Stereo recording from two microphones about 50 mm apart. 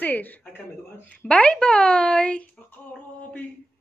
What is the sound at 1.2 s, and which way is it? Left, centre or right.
A woman's voice, left.